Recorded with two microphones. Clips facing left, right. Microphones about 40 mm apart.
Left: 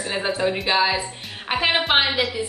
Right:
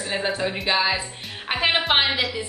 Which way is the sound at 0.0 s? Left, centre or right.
Centre.